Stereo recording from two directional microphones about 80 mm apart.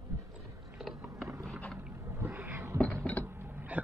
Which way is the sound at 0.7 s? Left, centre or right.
Centre.